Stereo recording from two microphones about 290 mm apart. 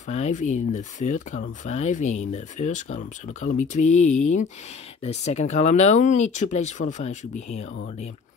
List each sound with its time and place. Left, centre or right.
0.1 s speech: left